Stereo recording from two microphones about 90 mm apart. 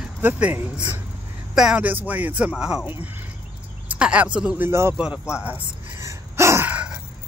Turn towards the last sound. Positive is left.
turn(degrees=-15)  # may be behind; listen again after turning